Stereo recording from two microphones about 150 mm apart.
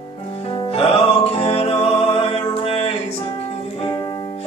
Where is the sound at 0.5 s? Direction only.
35° left (ahead or behind).